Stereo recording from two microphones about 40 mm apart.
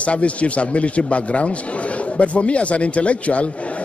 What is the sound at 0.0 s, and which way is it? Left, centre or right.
A man's voice, left.